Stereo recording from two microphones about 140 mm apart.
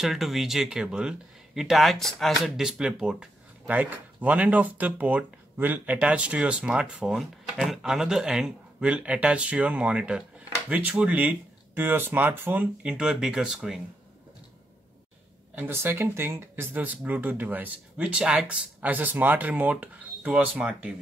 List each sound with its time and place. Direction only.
0.0 s speech: centre (ahead or behind)
15.5 s speech: 15° right (ahead or behind)